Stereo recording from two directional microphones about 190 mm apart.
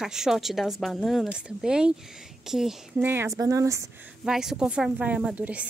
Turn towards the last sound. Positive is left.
turn(degrees=-5)  # may be behind; listen again after turning